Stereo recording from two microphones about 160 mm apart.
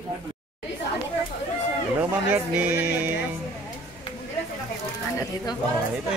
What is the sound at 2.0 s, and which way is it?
Music, 10° right (ahead or behind).